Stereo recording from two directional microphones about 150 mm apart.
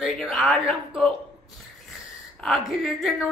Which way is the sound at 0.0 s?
Centre (ahead or behind).